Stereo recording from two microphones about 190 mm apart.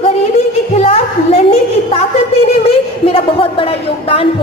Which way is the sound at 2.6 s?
30° left (ahead or behind).